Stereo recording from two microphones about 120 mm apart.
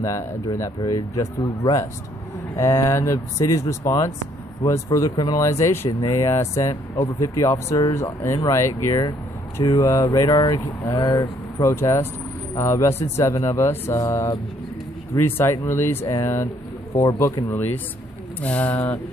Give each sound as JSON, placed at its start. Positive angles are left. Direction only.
{"t": 0.0, "sound": "speech", "side_deg": 25}
{"t": 18.4, "sound": "speech", "side_deg": 10}